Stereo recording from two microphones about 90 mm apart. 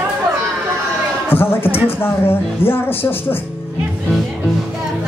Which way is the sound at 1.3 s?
25° left (ahead or behind).